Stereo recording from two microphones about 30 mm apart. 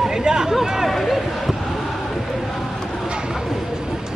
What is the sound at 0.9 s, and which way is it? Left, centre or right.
Basketball bounce, centre.